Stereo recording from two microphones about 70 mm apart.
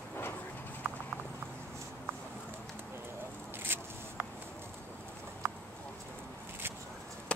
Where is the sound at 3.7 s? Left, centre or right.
Right.